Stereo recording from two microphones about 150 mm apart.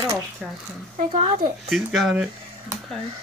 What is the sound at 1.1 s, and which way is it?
Speech, 40° right (ahead or behind).